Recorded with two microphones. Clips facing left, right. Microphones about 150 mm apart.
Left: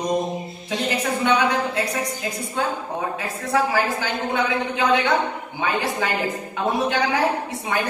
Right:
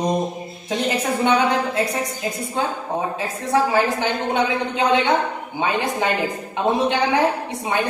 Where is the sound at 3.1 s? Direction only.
25° right (ahead or behind).